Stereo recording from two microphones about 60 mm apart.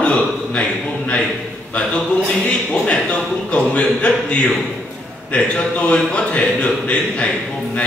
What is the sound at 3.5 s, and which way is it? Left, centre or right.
Speech, centre.